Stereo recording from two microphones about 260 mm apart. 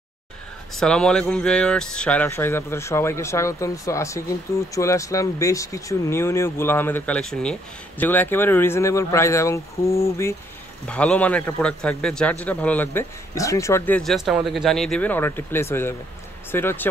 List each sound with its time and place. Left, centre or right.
0.7 s a man's voice: centre